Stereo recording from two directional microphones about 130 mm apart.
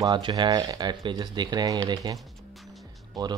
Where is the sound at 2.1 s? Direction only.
Centre (ahead or behind).